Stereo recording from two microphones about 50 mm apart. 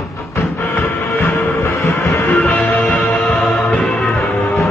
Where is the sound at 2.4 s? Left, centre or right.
Centre.